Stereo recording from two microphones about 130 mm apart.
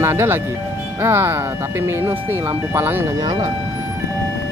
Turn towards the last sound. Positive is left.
turn(degrees=-35)  # may be behind; listen again after turning